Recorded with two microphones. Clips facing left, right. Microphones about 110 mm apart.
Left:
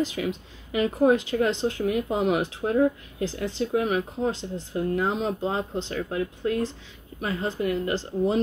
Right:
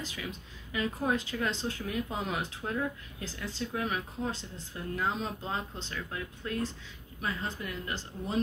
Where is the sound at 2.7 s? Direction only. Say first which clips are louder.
Left 12 dB; 40° left (ahead or behind).